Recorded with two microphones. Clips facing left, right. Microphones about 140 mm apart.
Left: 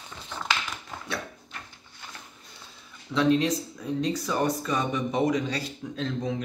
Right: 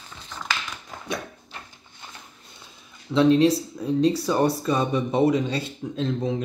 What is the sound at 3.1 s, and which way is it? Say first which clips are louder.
Speech: right 5 dB; 25° right (ahead or behind).